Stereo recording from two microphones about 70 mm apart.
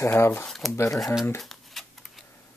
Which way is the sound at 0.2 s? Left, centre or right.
Left.